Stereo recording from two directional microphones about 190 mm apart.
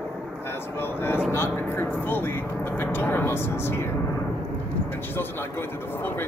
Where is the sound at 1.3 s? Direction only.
10° left (ahead or behind).